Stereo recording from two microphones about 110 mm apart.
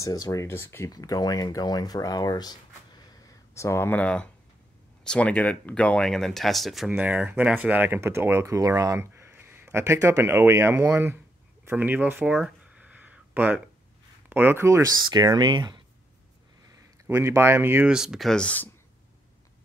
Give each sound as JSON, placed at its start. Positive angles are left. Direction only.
{"t": 0.0, "sound": "speech", "side_deg": 35}
{"t": 6.9, "sound": "speech", "side_deg": -15}
{"t": 12.4, "sound": "a sound", "side_deg": -10}
{"t": 14.3, "sound": "speech", "side_deg": -20}
{"t": 15.0, "sound": "speech", "side_deg": -40}
{"t": 17.1, "sound": "speech", "side_deg": -25}
{"t": 17.8, "sound": "speech", "side_deg": -5}
{"t": 18.3, "sound": "speech", "side_deg": 10}